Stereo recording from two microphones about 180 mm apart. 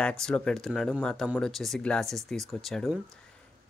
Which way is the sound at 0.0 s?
5° left (ahead or behind).